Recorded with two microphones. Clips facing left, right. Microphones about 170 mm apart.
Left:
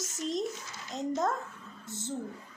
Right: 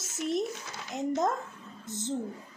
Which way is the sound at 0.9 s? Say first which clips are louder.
Right 2 dB; 10° right (ahead or behind).